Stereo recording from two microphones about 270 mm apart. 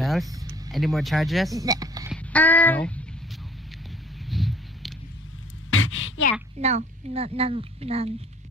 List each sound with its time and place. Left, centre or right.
0.0 s vehicle: centre
0.7 s speech: centre
1.5 s speech: centre
2.1 s speech: centre
4.3 s a sound: centre
5.7 s a sound: left
6.6 s a child's voice: right